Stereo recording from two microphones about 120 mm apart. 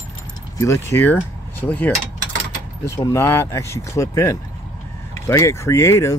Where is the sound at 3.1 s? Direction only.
20° left (ahead or behind).